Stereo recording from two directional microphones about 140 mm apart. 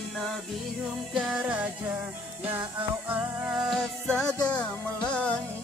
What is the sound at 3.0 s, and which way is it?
Music, 10° right (ahead or behind).